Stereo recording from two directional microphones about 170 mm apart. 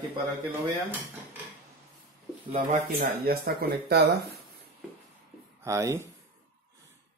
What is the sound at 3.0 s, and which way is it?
Speech, 65° right (ahead or behind).